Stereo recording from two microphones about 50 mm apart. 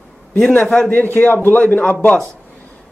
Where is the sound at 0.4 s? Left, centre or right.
Centre.